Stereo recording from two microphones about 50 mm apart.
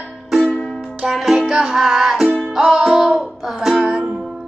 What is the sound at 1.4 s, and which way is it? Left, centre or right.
Music, centre.